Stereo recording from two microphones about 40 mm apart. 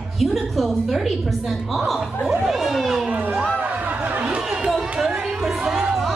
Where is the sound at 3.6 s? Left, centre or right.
Right.